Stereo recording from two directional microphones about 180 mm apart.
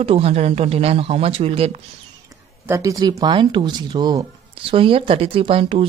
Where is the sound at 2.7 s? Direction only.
15° right (ahead or behind).